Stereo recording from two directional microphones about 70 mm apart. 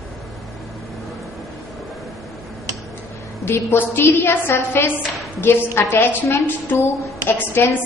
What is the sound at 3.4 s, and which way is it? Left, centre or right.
A woman's voice, left.